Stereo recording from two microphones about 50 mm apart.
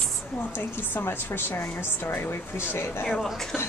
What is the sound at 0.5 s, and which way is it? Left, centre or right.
A woman's voice, left.